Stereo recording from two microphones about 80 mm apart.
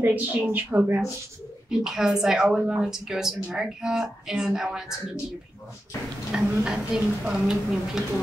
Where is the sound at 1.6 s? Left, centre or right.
Centre.